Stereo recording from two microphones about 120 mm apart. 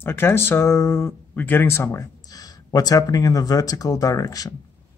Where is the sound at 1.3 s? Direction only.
15° left (ahead or behind); by 4.5 s 30° left (ahead or behind).